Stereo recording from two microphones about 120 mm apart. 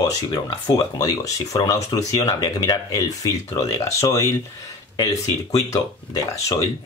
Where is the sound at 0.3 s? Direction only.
30° left (ahead or behind).